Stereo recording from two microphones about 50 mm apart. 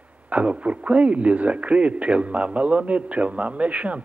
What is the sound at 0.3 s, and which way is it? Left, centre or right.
A man's voice, right.